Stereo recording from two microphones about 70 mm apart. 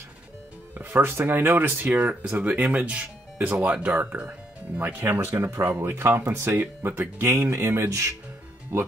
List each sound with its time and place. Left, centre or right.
0.7 s speech: right